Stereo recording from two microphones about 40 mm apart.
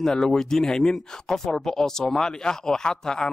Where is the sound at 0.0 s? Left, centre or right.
Centre.